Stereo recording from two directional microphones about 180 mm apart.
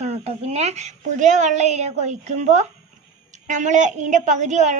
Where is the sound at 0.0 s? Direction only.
35° right (ahead or behind).